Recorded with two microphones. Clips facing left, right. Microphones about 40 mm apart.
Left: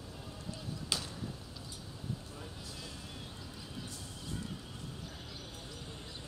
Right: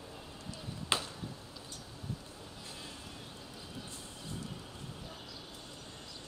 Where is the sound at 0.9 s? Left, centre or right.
Right.